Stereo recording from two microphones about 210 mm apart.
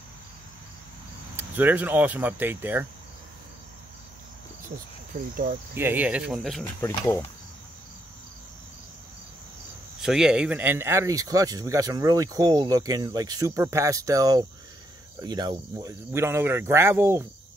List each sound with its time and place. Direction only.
1.3 s speech: 10° right (ahead or behind)
5.3 s cricket: 40° right (ahead or behind)
5.8 s speech: 10° right (ahead or behind)
6.6 s speech: 15° left (ahead or behind)
9.9 s speech: centre (ahead or behind)